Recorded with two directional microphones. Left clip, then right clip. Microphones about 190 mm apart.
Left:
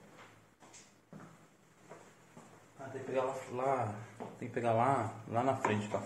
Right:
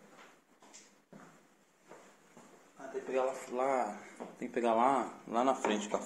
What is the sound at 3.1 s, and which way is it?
Speech, 40° right (ahead or behind).